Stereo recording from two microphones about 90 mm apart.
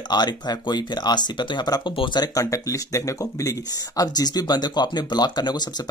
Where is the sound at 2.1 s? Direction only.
45° left (ahead or behind).